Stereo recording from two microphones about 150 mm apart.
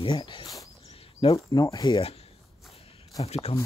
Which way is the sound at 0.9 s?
40° left (ahead or behind).